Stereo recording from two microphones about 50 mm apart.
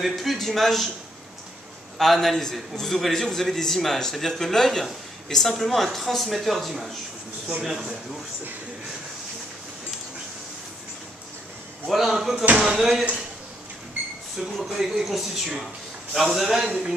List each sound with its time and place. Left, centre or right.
0.0 s a man's voice: centre
2.0 s a man's voice: centre
12.1 s speech: centre
14.4 s a man's voice: centre
16.6 s speech: right